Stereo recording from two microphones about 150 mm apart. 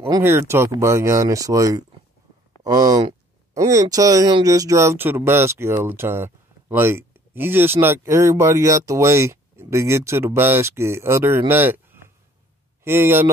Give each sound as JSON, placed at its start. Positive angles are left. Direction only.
{"t": 0.2, "sound": "speech", "side_deg": -15}